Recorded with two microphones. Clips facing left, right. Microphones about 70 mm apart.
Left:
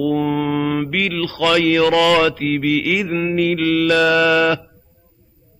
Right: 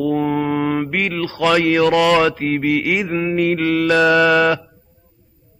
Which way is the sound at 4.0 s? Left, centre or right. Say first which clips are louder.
Right 4 dB; centre.